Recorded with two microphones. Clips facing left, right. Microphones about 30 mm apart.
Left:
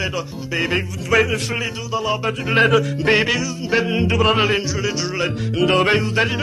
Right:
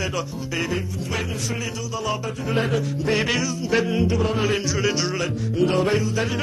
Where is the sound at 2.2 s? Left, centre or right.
Left.